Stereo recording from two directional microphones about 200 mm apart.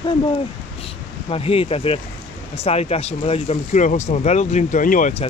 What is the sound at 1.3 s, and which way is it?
Speech, 30° left (ahead or behind).